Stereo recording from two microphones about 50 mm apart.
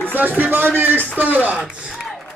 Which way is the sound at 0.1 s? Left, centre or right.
Right.